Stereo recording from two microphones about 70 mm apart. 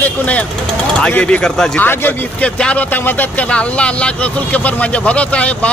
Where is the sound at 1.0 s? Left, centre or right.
Centre.